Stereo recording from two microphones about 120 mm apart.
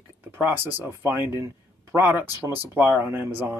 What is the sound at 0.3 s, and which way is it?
Speech, 15° right (ahead or behind).